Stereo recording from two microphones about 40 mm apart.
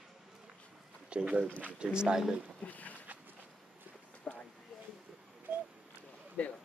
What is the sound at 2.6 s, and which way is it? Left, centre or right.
Speech, left.